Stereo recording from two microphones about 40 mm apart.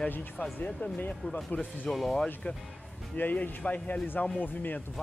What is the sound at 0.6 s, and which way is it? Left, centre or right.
Speech, left.